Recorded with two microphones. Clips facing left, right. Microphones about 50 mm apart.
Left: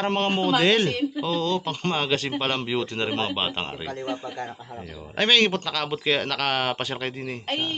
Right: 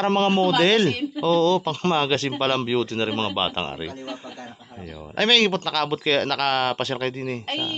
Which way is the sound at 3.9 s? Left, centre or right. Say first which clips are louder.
Left 4 dB; left.